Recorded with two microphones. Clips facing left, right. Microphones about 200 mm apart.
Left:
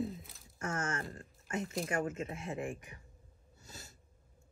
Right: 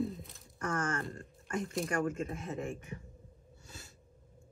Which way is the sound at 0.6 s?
25° left (ahead or behind).